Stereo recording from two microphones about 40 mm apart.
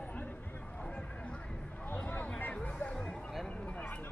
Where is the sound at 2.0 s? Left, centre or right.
Left.